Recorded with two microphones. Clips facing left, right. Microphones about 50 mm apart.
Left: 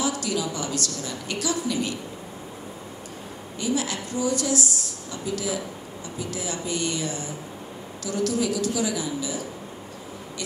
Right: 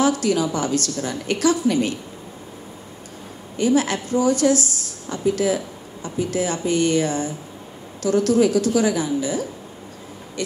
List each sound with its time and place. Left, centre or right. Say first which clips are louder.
0.0 s a woman's voice: right 7 dB; right
3.5 s a woman's voice: right 8 dB; right